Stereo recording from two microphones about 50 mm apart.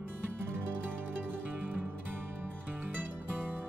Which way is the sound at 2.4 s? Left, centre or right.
Right.